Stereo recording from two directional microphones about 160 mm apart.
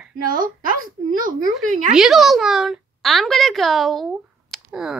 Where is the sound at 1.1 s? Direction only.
60° right (ahead or behind).